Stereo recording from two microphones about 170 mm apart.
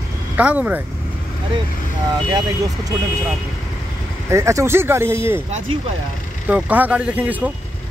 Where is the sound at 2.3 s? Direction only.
20° right (ahead or behind).